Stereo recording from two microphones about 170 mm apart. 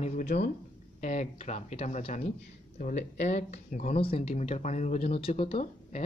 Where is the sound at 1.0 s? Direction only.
45° left (ahead or behind).